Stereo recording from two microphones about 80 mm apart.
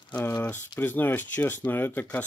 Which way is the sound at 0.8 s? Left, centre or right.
Left.